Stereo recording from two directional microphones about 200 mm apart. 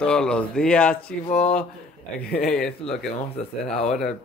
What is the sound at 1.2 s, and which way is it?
Speech, 30° left (ahead or behind).